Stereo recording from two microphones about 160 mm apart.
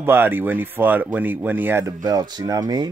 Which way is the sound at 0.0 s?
15° right (ahead or behind).